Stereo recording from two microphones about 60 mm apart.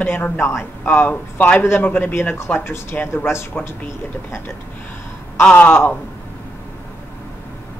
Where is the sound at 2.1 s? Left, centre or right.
Left.